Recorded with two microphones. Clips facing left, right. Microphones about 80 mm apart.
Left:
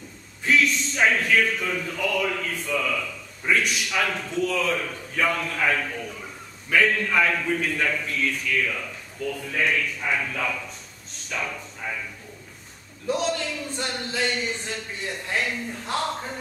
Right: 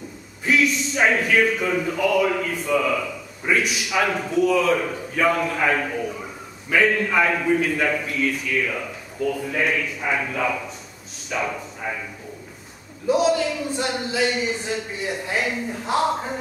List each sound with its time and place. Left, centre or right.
0.5 s a man's voice: centre
13.0 s a man's voice: centre